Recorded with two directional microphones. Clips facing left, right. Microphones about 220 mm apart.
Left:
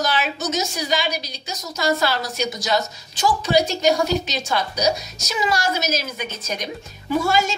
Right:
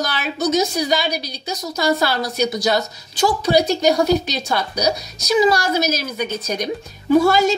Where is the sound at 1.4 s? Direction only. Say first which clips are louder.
Right 6 dB; 60° right (ahead or behind).